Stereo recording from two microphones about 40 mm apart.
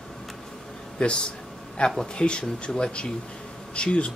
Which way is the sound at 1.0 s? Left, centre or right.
Left.